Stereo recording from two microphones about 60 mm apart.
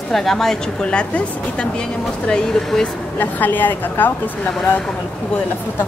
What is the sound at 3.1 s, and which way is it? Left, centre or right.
A woman's voice, left.